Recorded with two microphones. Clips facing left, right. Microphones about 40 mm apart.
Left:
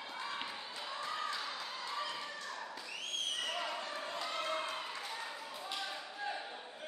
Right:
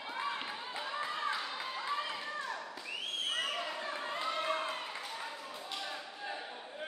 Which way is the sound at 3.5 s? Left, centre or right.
Centre.